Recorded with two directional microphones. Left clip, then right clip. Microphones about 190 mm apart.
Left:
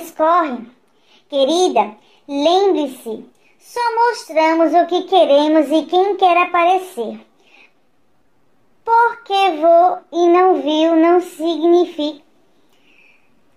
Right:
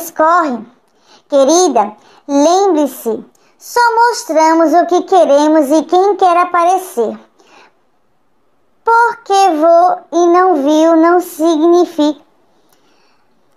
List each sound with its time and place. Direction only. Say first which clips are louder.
0.0 s a woman's voice: right 4 dB; 25° right (ahead or behind)
8.8 s a child's voice: right 4 dB; 25° right (ahead or behind)